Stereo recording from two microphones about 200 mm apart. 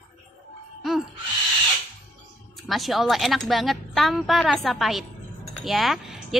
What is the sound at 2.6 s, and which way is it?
A woman's voice, centre (ahead or behind).